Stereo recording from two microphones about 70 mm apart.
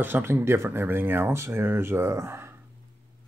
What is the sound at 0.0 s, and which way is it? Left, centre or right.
Speech, right.